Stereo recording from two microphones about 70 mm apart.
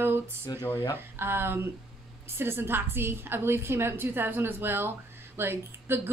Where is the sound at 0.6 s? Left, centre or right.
Left.